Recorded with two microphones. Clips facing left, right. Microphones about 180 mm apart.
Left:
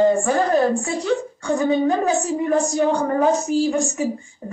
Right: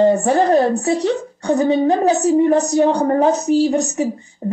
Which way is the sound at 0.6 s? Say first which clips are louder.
Right 4 dB; 40° right (ahead or behind).